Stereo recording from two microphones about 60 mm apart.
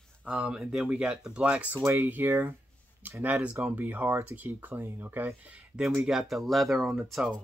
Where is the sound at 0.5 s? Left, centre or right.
Centre.